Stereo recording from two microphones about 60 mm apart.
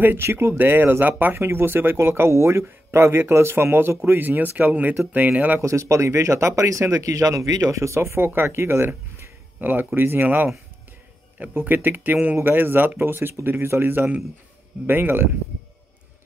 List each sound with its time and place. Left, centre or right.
0.0 s speech: right
5.6 s speech: right
7.8 s speech: right
8.3 s speech: right
11.5 s speech: right